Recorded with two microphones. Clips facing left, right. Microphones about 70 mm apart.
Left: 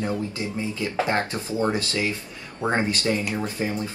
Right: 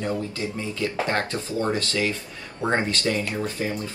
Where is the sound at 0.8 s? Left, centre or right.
Centre.